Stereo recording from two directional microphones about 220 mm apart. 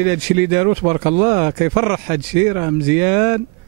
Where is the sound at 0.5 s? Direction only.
25° right (ahead or behind).